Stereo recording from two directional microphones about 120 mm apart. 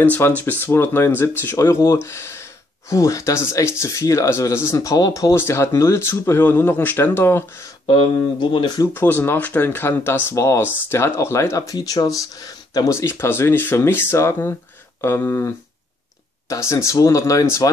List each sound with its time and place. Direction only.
0.0 s speech: 15° left (ahead or behind)
7.8 s speech: 40° left (ahead or behind)
8.8 s speech: 15° left (ahead or behind)